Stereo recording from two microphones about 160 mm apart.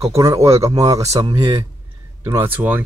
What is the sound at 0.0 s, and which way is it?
Speech, 20° right (ahead or behind).